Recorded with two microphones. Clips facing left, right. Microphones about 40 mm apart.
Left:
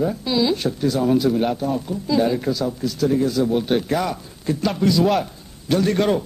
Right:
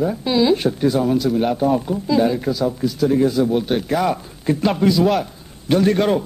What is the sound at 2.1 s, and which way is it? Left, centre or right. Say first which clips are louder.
A man's voice: right 1 dB; centre.